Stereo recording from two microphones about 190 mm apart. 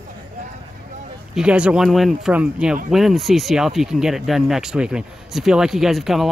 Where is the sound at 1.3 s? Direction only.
5° right (ahead or behind).